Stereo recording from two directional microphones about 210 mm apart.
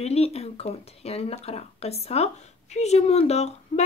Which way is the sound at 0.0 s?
30° left (ahead or behind).